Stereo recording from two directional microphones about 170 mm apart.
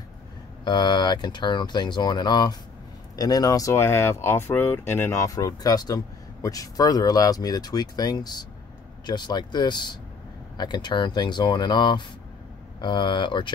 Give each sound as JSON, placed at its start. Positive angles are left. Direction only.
{"t": 0.7, "sound": "speech", "side_deg": 25}